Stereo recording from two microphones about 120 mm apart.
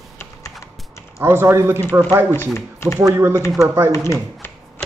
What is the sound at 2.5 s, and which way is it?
Speech, 20° left (ahead or behind).